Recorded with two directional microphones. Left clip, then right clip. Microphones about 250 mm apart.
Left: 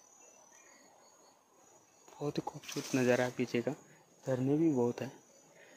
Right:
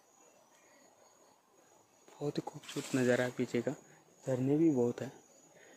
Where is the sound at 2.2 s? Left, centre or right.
Centre.